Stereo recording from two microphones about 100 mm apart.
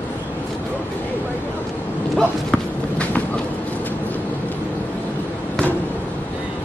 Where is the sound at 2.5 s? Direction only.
10° left (ahead or behind).